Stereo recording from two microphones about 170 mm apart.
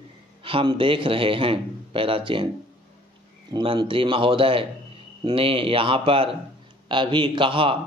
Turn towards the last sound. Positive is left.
turn(degrees=-30)  # may be behind; listen again after turning